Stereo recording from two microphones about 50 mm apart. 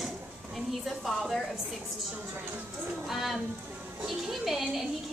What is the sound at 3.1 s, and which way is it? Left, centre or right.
A woman's voice, centre.